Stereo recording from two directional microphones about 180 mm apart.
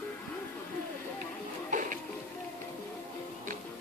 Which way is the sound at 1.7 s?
45° right (ahead or behind).